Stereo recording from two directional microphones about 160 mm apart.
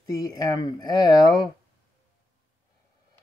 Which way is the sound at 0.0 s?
25° left (ahead or behind).